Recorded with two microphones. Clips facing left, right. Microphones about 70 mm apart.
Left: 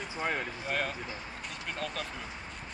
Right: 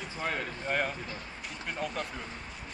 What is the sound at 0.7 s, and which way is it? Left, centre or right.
Speech, centre.